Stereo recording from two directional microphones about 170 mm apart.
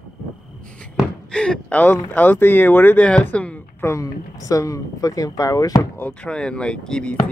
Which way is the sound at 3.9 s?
20° left (ahead or behind).